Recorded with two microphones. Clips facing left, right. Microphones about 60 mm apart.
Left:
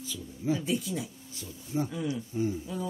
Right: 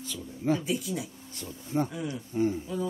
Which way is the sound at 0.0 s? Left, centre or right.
Right.